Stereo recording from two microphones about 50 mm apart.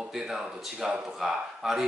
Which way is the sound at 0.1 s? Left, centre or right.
Centre.